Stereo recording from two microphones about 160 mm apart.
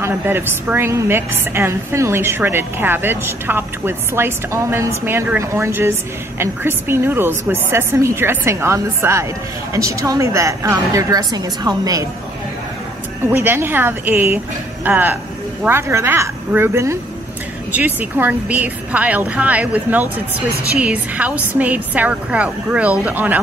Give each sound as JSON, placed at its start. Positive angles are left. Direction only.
{"t": 0.0, "sound": "a woman's voice", "side_deg": -15}
{"t": 13.3, "sound": "a woman's voice", "side_deg": -15}